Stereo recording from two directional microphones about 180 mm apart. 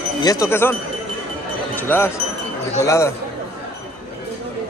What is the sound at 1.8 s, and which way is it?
Speech, 10° left (ahead or behind).